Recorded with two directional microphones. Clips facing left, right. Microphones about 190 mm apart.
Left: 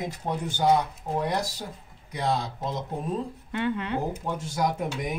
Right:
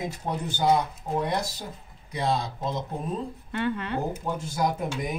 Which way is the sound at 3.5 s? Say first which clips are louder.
Even; 15° left (ahead or behind).